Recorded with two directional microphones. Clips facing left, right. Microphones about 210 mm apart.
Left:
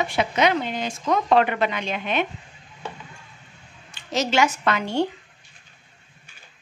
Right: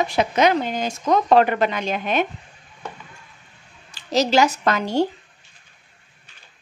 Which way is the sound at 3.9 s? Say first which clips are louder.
Right 5 dB; 35° right (ahead or behind).